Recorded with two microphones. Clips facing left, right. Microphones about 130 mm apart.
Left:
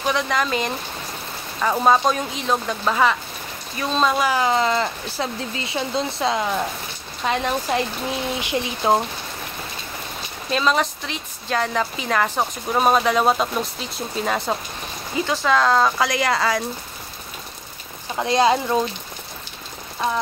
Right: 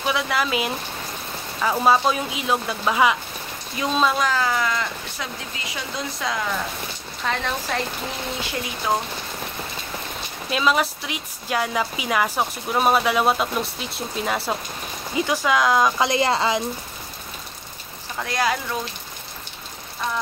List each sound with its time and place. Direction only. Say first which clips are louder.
0.0 s a woman's voice: left 1 dB; 5° right (ahead or behind)
4.0 s a woman's voice: left 2 dB; centre (ahead or behind)
4.3 s speech: left 4 dB; 20° left (ahead or behind)
10.5 s a woman's voice: left 1 dB; 5° right (ahead or behind)
16.0 s a woman's voice: even; 25° right (ahead or behind)
18.1 s speech: left 6 dB; 25° left (ahead or behind)